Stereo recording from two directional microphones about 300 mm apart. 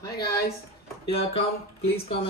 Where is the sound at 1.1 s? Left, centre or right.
Centre.